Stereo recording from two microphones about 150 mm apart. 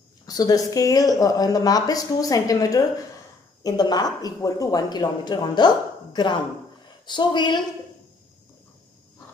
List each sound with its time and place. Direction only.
0.3 s speech: 25° left (ahead or behind)